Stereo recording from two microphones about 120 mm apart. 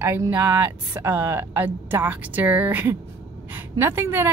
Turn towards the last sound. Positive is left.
turn(degrees=-20)  # may be behind; listen again after turning